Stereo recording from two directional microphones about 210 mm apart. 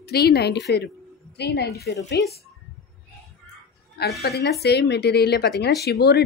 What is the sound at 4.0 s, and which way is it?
A woman's voice, 50° left (ahead or behind).